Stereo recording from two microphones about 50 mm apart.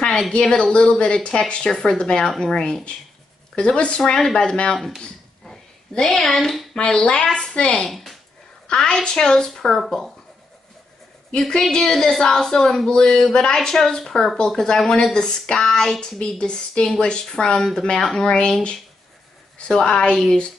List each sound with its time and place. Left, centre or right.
0.3 s speech: centre
4.7 s speech: centre
5.4 s a sound: centre
6.8 s speech: centre
7.9 s speech: centre
8.7 s speech: centre
11.3 s speech: centre
19.6 s speech: centre